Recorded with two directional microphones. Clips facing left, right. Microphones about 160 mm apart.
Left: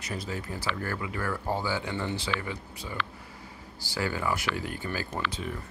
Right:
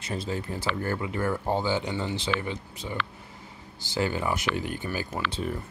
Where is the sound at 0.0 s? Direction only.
25° right (ahead or behind).